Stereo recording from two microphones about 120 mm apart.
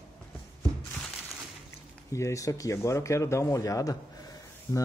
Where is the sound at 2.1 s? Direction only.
25° left (ahead or behind).